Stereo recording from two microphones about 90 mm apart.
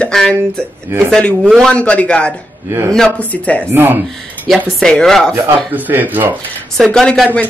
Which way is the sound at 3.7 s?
25° right (ahead or behind).